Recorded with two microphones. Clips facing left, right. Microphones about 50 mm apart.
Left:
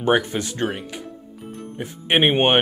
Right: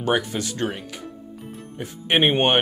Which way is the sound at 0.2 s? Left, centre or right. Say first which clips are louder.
Left 2 dB; left.